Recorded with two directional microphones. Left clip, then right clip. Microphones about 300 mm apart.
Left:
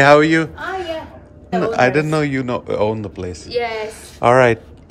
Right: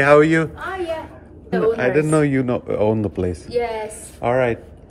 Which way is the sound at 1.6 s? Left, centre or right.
Centre.